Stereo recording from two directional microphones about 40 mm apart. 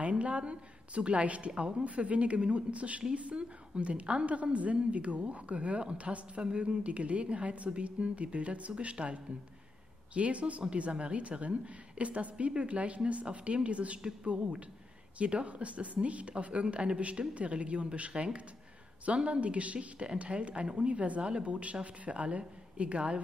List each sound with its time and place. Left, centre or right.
0.2 s a woman's voice: right